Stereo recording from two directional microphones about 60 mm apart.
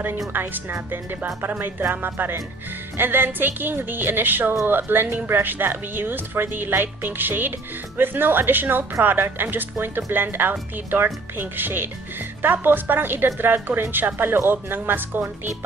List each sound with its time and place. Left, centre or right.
0.3 s a woman's voice: right